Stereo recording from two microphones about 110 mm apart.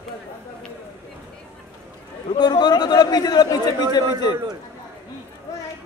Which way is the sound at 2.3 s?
40° left (ahead or behind).